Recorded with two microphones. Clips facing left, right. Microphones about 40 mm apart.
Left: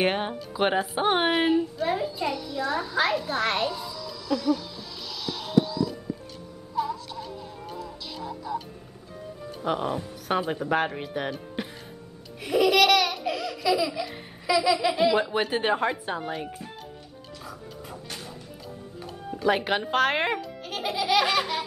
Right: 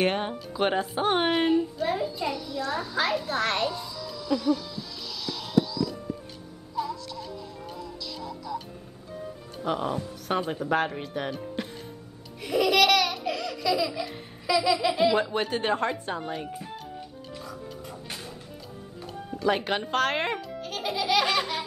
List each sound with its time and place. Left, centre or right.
0.0 s speech: centre
6.8 s music: centre
7.7 s music: left
9.6 s speech: centre
12.4 s laughter: centre
19.4 s speech: centre